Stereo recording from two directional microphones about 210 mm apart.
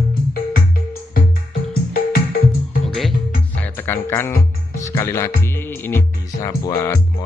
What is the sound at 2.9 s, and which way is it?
Music, centre (ahead or behind).